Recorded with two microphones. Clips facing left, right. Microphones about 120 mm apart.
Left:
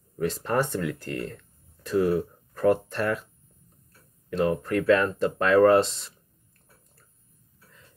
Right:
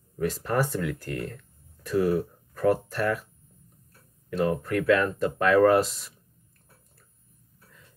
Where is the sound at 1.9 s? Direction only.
Centre (ahead or behind).